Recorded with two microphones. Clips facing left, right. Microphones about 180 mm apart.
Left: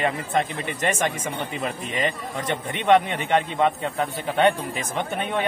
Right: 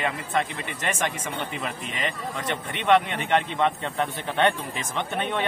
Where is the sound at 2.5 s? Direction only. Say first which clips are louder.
Left 3 dB; 15° left (ahead or behind).